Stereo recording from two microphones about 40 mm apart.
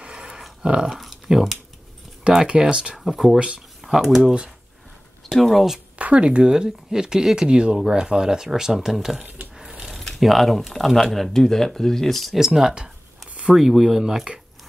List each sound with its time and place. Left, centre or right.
0.0 s a sound: centre
0.8 s a sound: centre
2.3 s speech: right
3.0 s speech: centre
3.3 s speech: right
3.8 s speech: centre
4.2 s speech: right
5.3 s speech: centre
5.9 s speech: right; by 9.2 s centre
9.6 s mechanisms: centre
9.9 s speech: centre
12.4 s speech: centre